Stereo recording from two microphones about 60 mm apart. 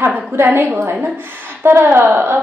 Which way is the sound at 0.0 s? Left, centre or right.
Right.